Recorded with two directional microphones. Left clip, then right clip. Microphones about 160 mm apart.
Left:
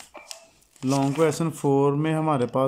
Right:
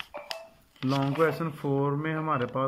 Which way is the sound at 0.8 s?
20° left (ahead or behind).